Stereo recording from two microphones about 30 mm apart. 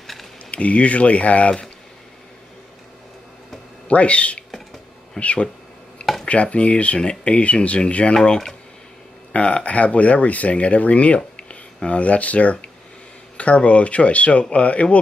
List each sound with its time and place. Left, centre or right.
0.0 s a sound: centre
0.5 s speech: left
3.9 s speech: left
8.1 s speech: left
9.3 s speech: left
11.3 s a sound: left
12.0 s speech: left